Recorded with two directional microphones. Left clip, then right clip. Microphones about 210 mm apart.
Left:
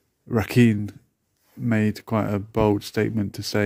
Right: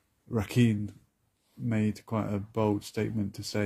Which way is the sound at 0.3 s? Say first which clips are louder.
Left 8 dB; 55° left (ahead or behind).